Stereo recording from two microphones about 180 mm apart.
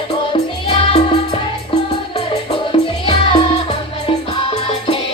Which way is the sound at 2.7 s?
30° left (ahead or behind).